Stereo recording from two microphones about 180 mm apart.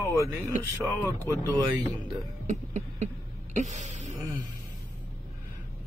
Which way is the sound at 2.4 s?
40° right (ahead or behind).